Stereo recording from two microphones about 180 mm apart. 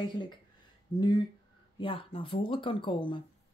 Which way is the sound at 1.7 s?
30° left (ahead or behind).